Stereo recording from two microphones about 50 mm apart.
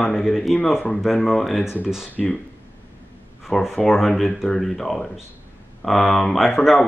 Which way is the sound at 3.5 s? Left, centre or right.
Centre.